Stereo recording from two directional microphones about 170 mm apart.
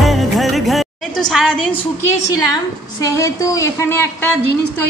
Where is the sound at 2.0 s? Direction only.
20° left (ahead or behind).